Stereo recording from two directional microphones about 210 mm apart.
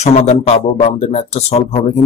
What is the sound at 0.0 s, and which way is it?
Speech, 30° left (ahead or behind).